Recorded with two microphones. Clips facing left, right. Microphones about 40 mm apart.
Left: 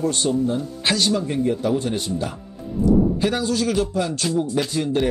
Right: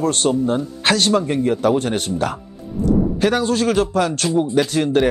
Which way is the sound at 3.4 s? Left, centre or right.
Right.